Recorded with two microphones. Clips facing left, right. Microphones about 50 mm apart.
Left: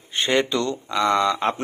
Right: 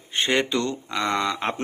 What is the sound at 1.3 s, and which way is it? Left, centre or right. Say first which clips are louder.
Mantra: left 4 dB; centre.